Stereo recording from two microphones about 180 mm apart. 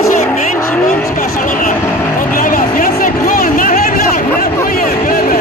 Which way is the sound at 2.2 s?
50° left (ahead or behind).